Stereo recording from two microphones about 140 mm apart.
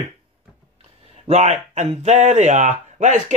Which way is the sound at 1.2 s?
50° right (ahead or behind).